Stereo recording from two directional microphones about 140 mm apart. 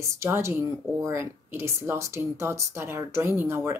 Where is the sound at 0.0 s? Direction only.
20° right (ahead or behind).